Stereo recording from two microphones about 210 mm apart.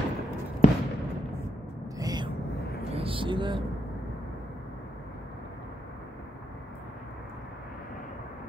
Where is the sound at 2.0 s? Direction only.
20° right (ahead or behind).